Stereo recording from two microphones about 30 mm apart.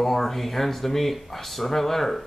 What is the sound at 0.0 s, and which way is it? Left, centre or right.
Speech, centre.